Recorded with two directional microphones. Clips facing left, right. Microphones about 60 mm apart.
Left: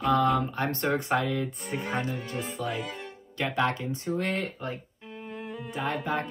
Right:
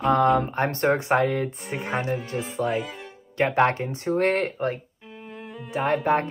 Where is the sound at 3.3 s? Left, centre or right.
Right.